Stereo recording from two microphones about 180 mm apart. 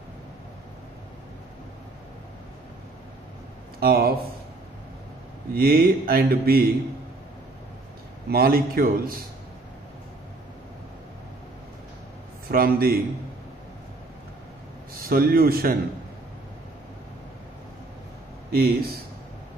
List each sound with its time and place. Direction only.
3.8 s speech: 55° right (ahead or behind)
5.5 s speech: 55° right (ahead or behind)
8.3 s speech: 55° right (ahead or behind)
12.4 s speech: 55° right (ahead or behind)
15.0 s speech: 55° right (ahead or behind)
18.5 s speech: 55° right (ahead or behind)